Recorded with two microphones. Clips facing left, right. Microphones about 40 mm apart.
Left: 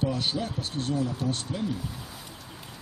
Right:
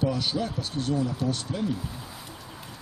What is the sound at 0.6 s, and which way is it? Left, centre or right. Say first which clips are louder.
Speech: right 1 dB; left.